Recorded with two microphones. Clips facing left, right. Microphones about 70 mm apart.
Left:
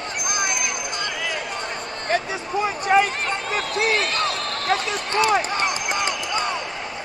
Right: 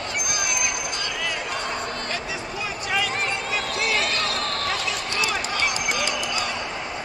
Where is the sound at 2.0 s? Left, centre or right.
Left.